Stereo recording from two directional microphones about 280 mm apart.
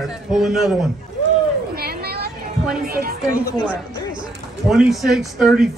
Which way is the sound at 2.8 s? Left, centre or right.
Right.